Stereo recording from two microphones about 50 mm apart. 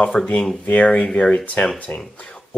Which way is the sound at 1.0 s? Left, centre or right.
Centre.